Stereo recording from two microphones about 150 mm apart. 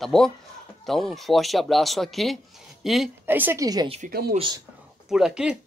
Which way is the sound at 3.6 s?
25° right (ahead or behind).